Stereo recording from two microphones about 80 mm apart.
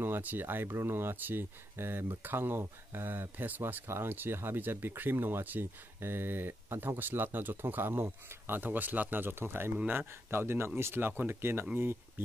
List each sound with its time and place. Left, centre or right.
0.0 s speech: right